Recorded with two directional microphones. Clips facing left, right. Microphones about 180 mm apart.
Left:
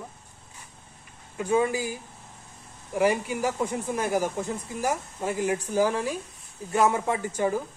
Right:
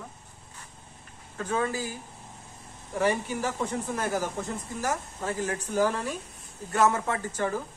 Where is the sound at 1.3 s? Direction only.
15° left (ahead or behind).